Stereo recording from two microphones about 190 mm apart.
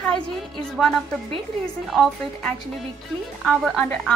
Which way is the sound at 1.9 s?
Centre (ahead or behind).